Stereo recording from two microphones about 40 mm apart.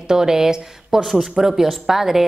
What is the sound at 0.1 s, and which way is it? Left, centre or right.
A woman's voice, centre.